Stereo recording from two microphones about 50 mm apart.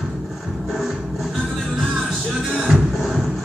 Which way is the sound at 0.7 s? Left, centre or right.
Centre.